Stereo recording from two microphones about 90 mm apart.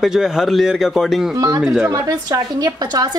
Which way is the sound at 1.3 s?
40° right (ahead or behind).